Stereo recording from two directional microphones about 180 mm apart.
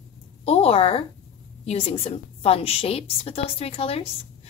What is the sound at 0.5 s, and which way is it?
A woman's voice, 35° left (ahead or behind).